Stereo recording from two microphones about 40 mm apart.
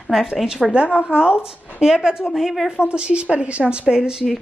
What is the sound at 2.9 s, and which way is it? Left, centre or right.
Speech, right.